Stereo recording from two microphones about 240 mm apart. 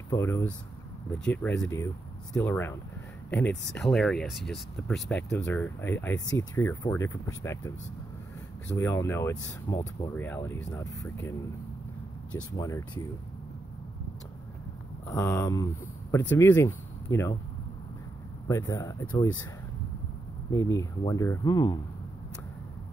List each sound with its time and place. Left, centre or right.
0.1 s speech: centre
8.7 s speech: centre
12.4 s speech: centre
15.0 s speech: centre
18.5 s speech: centre
20.5 s speech: centre